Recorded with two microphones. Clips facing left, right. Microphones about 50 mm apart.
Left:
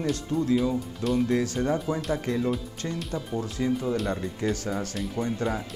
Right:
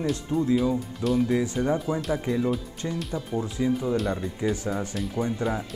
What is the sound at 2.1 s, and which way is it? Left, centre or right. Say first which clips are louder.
Speech: right 1 dB; centre.